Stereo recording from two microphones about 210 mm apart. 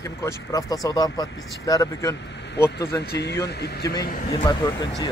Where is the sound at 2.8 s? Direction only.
55° left (ahead or behind).